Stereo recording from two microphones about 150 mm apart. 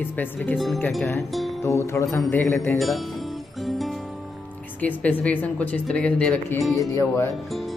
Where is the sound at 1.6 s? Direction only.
20° left (ahead or behind).